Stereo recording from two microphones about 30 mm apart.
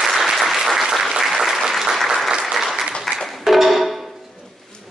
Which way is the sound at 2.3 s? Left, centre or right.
Right.